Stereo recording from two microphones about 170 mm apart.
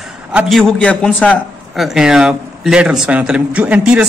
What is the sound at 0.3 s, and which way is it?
A man's voice, 5° right (ahead or behind).